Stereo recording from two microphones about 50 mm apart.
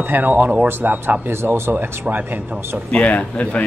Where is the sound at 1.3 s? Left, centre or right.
Right.